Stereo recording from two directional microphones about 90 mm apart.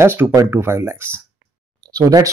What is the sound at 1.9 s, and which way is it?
Speech, 40° right (ahead or behind).